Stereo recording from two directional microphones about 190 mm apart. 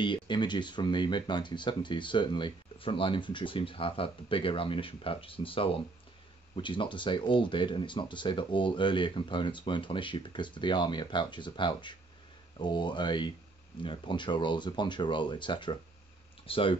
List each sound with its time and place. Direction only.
0.0 s speech: 25° left (ahead or behind)